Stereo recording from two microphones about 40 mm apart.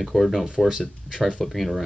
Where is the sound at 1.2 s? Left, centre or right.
Centre.